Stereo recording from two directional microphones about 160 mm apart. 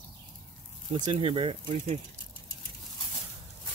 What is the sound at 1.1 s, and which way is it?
Speech, 35° right (ahead or behind).